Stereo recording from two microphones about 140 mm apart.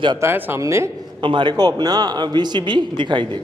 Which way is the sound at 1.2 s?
35° right (ahead or behind).